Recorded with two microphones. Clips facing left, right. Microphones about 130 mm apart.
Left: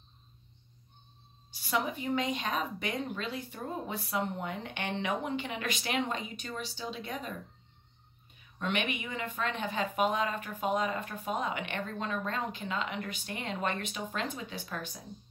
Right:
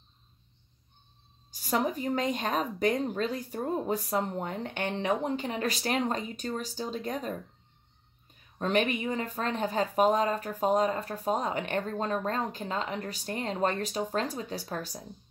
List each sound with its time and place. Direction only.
1.5 s speech: 40° right (ahead or behind)
8.5 s speech: 40° right (ahead or behind)